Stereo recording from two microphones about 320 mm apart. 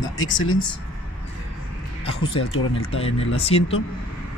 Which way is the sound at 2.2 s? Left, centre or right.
Left.